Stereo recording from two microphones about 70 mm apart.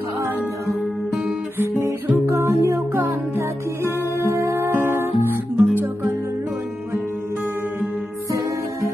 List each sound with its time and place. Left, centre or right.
1.6 s music: right
2.2 s music: right